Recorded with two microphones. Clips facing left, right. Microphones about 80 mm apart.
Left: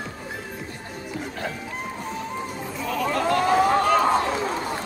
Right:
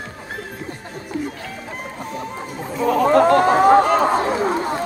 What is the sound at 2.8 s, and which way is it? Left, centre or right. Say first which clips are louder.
Chatter: right 11 dB; right.